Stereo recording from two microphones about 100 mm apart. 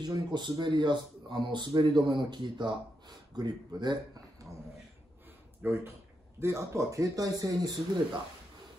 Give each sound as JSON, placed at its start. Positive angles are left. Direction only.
{"t": 0.0, "sound": "speech", "side_deg": -50}
{"t": 5.6, "sound": "speech", "side_deg": -25}